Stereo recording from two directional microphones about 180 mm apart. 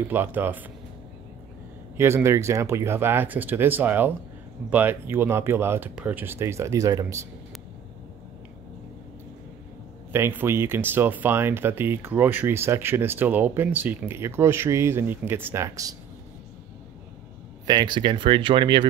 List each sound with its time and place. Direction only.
0.1 s speech: 10° right (ahead or behind)
2.0 s speech: 15° right (ahead or behind)
10.1 s speech: 15° right (ahead or behind)
17.6 s speech: 25° right (ahead or behind)